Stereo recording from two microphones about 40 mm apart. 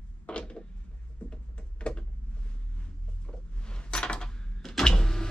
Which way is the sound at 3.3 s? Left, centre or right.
Left.